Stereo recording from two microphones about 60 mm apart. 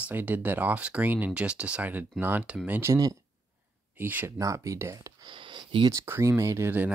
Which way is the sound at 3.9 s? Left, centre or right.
Right.